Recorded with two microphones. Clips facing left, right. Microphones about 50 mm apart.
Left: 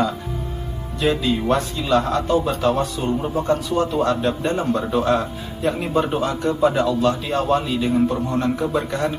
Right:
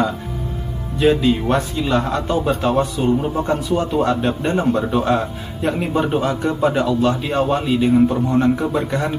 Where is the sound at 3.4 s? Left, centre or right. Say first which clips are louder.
Even; centre.